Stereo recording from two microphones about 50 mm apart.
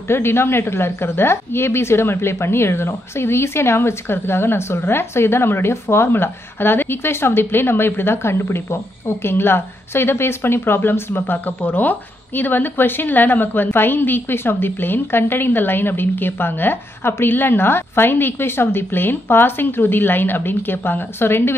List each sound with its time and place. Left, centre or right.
0.1 s speech: left